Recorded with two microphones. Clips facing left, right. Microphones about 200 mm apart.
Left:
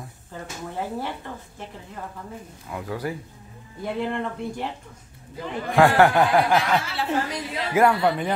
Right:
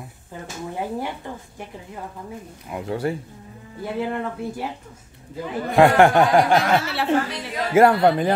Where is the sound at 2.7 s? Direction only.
25° right (ahead or behind).